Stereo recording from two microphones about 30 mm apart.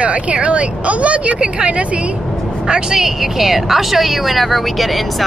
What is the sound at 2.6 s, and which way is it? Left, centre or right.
Speech, right.